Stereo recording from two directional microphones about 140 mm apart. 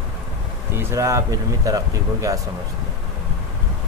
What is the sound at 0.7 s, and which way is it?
Speech, 20° right (ahead or behind).